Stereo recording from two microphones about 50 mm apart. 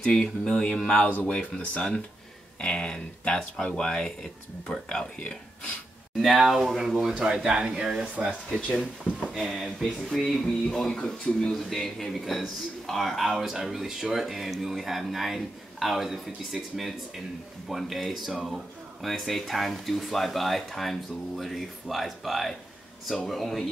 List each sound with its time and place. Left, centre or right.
0.0 s speech: centre
6.1 s speech: centre
7.2 s speech: centre
7.9 s speech: centre
9.3 s speech: centre